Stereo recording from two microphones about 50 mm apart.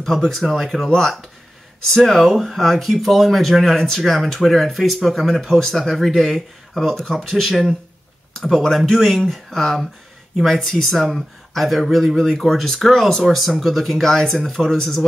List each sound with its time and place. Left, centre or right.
0.0 s speech: centre